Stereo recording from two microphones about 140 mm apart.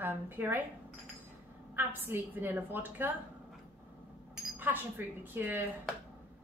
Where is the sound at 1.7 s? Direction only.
15° right (ahead or behind).